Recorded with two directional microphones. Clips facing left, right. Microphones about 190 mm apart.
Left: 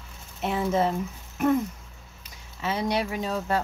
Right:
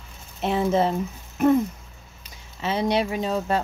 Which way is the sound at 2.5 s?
25° right (ahead or behind).